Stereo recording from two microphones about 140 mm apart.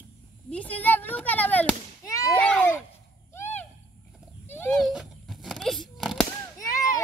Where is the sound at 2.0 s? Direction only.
25° left (ahead or behind).